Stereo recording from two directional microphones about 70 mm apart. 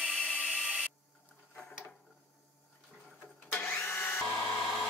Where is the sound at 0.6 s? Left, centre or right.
Centre.